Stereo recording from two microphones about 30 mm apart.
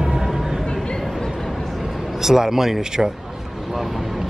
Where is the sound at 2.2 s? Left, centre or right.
Centre.